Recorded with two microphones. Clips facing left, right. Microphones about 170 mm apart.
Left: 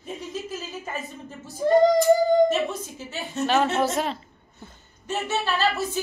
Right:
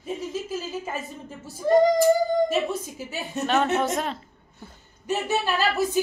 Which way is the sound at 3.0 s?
10° right (ahead or behind).